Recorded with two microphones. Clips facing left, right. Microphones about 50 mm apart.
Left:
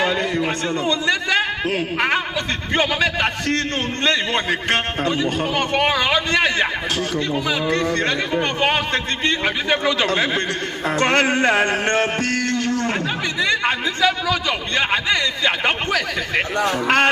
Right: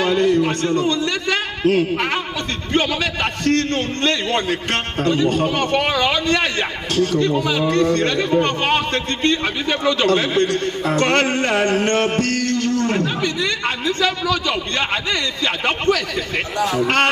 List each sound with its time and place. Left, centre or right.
0.0 s a man's voice: left
16.8 s a man's voice: left